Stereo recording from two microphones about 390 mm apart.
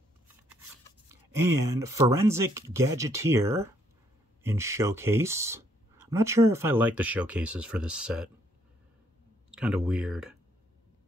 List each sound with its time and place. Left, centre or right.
1.3 s speech: centre
9.5 s speech: centre